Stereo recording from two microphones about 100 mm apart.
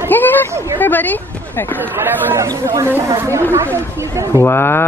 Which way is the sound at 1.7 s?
20° right (ahead or behind).